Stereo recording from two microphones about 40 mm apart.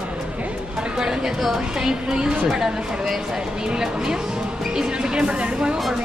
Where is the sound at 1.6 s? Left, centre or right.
Centre.